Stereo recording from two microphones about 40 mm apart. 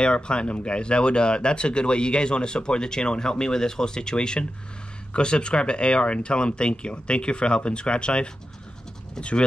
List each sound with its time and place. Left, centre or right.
0.0 s speech: left